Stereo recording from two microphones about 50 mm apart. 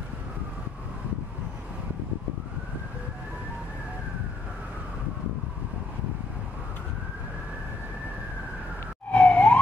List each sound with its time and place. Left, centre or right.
9.1 s emergency vehicle: left